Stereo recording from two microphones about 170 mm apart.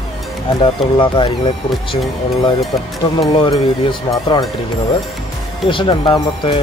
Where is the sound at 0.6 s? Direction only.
30° left (ahead or behind).